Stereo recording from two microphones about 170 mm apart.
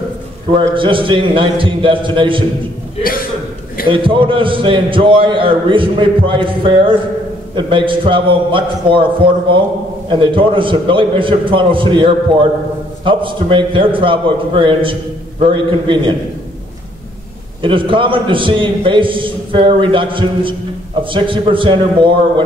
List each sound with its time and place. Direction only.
0.5 s a man's voice: 30° right (ahead or behind)
3.0 s speech: 60° left (ahead or behind)
3.8 s a man's voice: 30° right (ahead or behind)
17.6 s a man's voice: 30° right (ahead or behind)